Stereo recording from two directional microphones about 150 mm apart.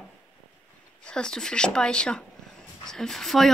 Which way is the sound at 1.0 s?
5° left (ahead or behind).